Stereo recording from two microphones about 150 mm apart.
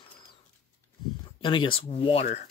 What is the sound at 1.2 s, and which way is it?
Speech, 35° left (ahead or behind).